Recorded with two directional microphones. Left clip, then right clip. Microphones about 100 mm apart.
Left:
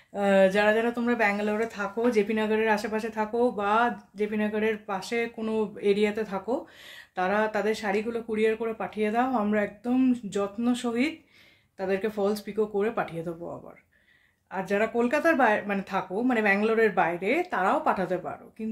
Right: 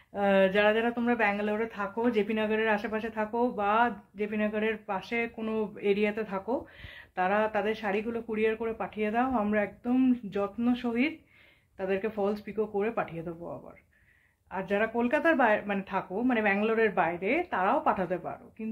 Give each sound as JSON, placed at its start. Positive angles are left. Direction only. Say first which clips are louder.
{"t": 0.1, "sound": "speech", "louder": "left 3 dB", "side_deg": 30}
{"t": 14.5, "sound": "speech", "louder": "left 2 dB", "side_deg": 30}